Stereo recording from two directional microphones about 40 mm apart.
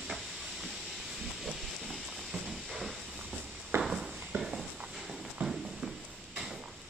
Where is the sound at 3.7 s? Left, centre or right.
Right.